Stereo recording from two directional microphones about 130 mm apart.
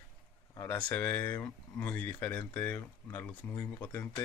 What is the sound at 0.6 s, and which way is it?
Speech, 15° left (ahead or behind).